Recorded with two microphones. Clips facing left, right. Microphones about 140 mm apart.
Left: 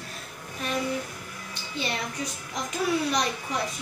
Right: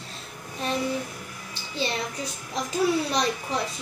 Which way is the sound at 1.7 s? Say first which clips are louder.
Right 2 dB; 30° right (ahead or behind).